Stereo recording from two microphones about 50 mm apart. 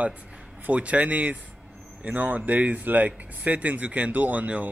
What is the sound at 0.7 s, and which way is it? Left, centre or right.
A man's voice, right.